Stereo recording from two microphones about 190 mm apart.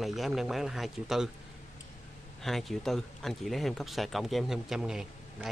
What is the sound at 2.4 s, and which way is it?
Speech, centre (ahead or behind).